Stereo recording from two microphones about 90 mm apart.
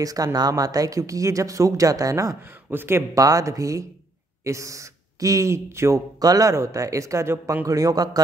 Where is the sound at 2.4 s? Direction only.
25° right (ahead or behind).